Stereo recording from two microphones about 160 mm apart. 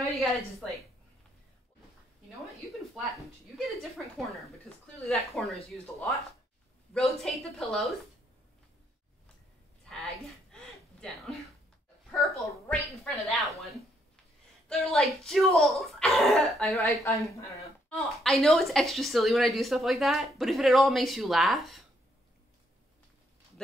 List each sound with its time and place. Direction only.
0.0 s a woman's voice: centre (ahead or behind)
4.2 s a woman's voice: centre (ahead or behind)
9.8 s a sound: centre (ahead or behind)
12.4 s a woman's voice: 5° left (ahead or behind)
14.7 s a woman's voice: centre (ahead or behind)
16.8 s speech: 20° left (ahead or behind)
17.8 s a woman's voice: 5° left (ahead or behind)